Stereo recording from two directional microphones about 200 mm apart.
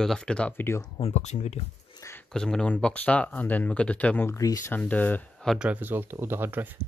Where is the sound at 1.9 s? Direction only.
15° left (ahead or behind).